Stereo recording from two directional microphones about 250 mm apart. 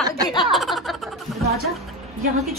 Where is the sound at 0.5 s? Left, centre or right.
Centre.